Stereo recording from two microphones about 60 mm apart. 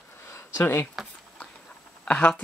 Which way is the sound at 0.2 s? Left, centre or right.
Left.